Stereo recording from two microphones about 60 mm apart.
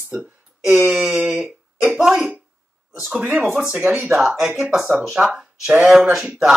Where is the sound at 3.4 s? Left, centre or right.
Centre.